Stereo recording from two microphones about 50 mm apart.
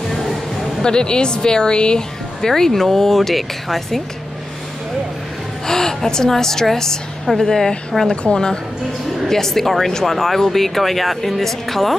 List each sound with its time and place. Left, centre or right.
0.8 s speech: centre
5.7 s speech: centre
8.2 s speech: centre